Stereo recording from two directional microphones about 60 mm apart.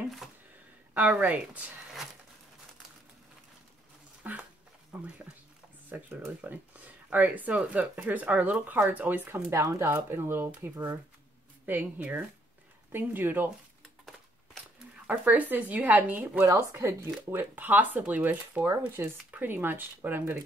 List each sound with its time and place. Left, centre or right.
0.9 s speech: right
4.2 s a sound: right
4.9 s speech: centre
5.9 s a sound: right
6.4 s speech: right
9.5 s speech: right
10.0 s speech: right
13.8 s a sound: centre
15.0 s speech: right
16.7 s speech: right
17.4 s speech: right
18.7 s speech: right
19.3 s speech: right